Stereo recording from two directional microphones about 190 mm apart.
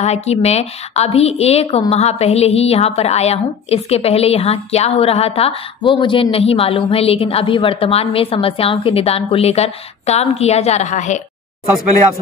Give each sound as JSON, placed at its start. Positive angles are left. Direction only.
{"t": 0.0, "sound": "a woman's voice", "side_deg": 35}